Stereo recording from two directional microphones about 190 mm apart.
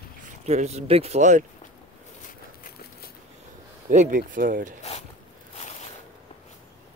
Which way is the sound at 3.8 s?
40° right (ahead or behind).